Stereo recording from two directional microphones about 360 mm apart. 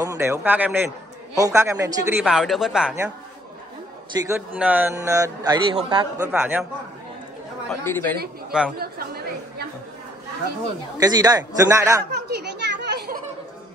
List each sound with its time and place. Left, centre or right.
0.0 s a man's voice: centre
4.3 s a man's voice: centre
7.8 s a man's voice: centre
8.7 s a woman's voice: right
11.0 s a man's voice: centre
12.1 s children playing: right